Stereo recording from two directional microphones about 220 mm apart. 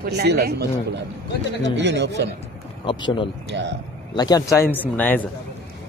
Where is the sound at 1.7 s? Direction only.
50° right (ahead or behind).